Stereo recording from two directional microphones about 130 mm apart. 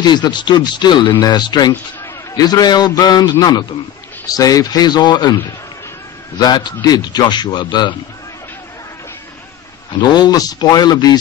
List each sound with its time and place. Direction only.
0.0 s speech: 35° left (ahead or behind)
6.4 s speech: 30° left (ahead or behind)
9.9 s speech: 35° left (ahead or behind)